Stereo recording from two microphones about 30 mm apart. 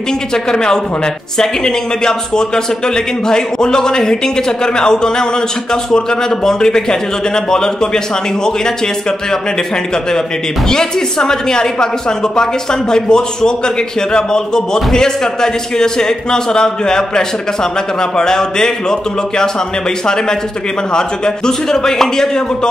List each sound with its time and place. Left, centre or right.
0.3 s speech: left
10.7 s speech: left
21.5 s speech: centre